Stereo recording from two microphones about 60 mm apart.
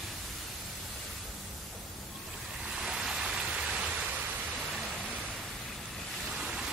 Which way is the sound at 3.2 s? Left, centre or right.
Centre.